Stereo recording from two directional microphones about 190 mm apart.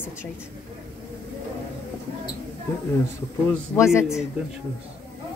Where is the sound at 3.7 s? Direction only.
15° left (ahead or behind).